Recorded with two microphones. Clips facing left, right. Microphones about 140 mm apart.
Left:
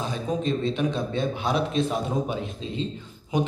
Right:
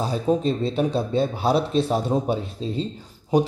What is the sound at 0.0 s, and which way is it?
A man's voice, 35° right (ahead or behind).